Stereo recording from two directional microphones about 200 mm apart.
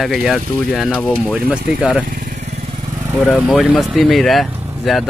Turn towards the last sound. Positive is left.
turn(degrees=0)  # may be behind; listen again after turning